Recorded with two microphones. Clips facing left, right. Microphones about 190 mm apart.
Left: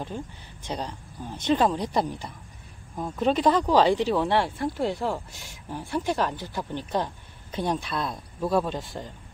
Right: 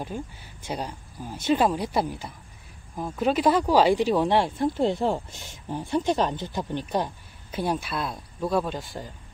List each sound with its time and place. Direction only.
0.1 s speech: 10° right (ahead or behind)